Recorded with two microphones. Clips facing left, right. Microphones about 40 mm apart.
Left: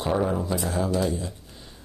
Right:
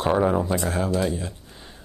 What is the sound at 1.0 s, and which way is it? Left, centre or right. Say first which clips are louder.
Speech: right 1 dB; right.